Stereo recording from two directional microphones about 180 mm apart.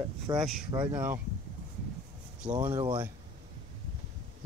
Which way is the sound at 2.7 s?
25° right (ahead or behind).